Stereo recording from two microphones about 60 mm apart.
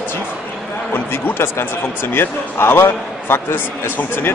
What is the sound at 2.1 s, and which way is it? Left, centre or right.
Speech, left.